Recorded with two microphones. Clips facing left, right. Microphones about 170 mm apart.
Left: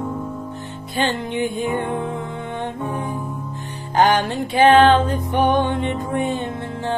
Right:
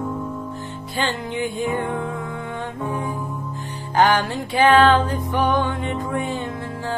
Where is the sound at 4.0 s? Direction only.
20° left (ahead or behind).